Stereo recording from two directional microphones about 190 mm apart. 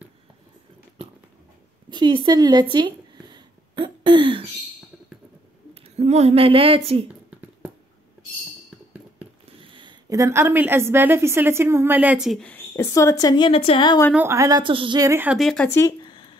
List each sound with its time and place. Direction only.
1.9 s a sound: 25° right (ahead or behind)
5.9 s speech: 35° right (ahead or behind)
9.6 s a woman's voice: 25° right (ahead or behind); by 14.0 s 25° left (ahead or behind)
14.1 s a woman's voice: 15° right (ahead or behind)
15.3 s speech: 5° left (ahead or behind)